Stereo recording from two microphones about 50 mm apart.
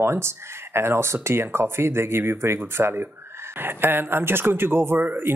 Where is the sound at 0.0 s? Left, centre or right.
Right.